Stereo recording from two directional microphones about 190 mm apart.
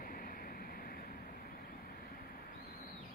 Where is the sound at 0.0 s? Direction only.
45° left (ahead or behind).